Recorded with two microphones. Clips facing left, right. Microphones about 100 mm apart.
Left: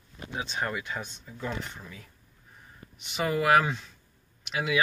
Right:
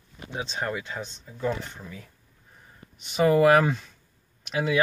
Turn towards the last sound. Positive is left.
turn(degrees=-40)  # may be behind; listen again after turning